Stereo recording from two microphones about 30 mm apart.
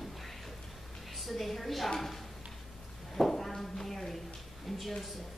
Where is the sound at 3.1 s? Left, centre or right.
Centre.